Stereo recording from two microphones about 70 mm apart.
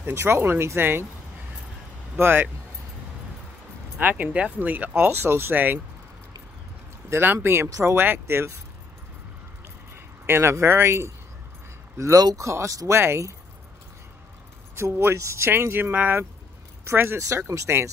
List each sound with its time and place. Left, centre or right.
0.1 s speech: right
2.1 s speech: right
4.0 s speech: right
7.1 s speech: right
10.2 s speech: right
12.4 s speech: right
14.8 s speech: right